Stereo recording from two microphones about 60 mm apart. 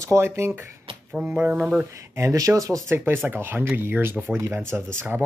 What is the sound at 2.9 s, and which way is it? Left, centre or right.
Speech, right.